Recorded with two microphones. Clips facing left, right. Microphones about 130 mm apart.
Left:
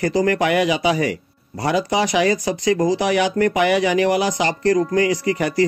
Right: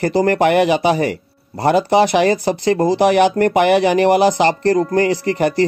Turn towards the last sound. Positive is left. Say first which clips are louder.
# right 3 dB
turn(degrees=-35)  # may be behind; listen again after turning